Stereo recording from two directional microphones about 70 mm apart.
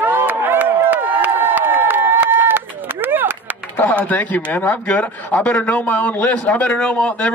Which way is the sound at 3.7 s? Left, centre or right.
Left.